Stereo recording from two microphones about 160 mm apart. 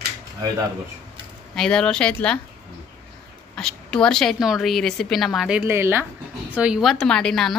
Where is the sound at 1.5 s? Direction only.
5° left (ahead or behind).